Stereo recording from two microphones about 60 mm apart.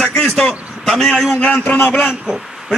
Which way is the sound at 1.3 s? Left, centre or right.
Left.